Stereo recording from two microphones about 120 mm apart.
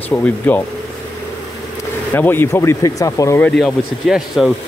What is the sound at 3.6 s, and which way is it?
Speech, centre (ahead or behind).